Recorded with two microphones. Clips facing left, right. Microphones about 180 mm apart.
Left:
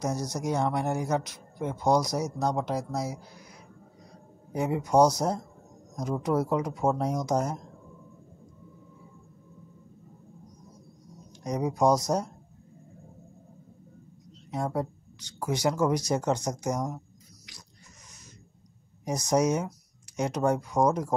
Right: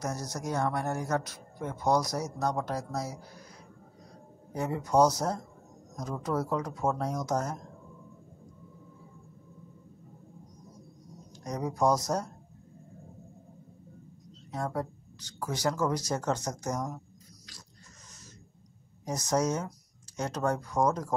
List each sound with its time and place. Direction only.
0.0 s speech: 15° left (ahead or behind)
4.5 s speech: 15° left (ahead or behind)
11.3 s speech: 15° left (ahead or behind)
14.5 s speech: 15° left (ahead or behind)
19.0 s speech: 15° left (ahead or behind)